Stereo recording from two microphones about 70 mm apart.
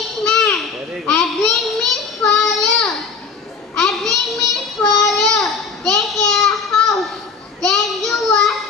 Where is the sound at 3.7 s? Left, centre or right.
Centre.